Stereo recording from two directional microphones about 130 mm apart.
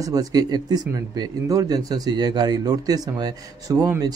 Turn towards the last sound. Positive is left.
turn(degrees=-30)  # may be behind; listen again after turning